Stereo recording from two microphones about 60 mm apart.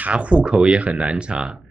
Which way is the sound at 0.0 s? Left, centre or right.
Right.